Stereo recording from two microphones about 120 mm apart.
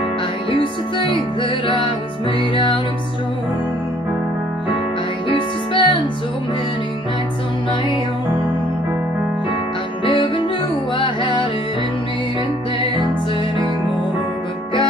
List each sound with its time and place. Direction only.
0.5 s music: 45° left (ahead or behind)
5.3 s music: 45° left (ahead or behind)
10.0 s music: 45° left (ahead or behind)